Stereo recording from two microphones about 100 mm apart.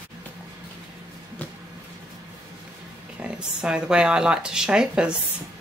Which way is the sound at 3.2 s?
10° right (ahead or behind).